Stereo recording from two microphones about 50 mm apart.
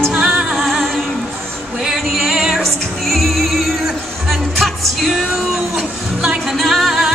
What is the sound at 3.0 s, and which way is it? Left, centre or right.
Music, centre.